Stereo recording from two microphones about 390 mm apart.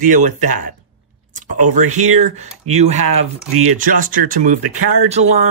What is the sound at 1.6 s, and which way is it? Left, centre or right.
Speech, right.